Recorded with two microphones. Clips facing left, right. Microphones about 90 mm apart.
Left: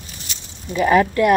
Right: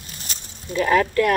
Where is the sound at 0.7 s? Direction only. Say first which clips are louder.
Left 3 dB; 15° left (ahead or behind).